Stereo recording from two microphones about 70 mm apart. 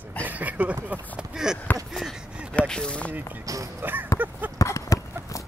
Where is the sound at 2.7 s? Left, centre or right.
Centre.